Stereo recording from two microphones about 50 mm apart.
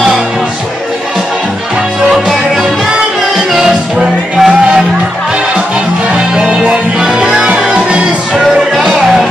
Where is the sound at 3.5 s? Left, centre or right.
Centre.